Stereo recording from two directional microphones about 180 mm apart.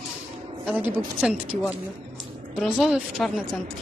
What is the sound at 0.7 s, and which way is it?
Speech, 10° right (ahead or behind).